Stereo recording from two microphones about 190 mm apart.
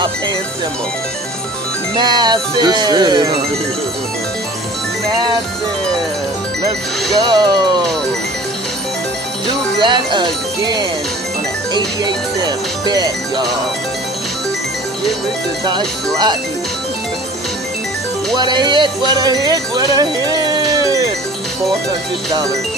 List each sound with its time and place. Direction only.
2.0 s speech: 20° right (ahead or behind)
7.2 s speech: 20° right (ahead or behind)
9.5 s speech: 25° right (ahead or behind)
12.4 s speech: 20° right (ahead or behind)
18.3 s speech: 25° right (ahead or behind)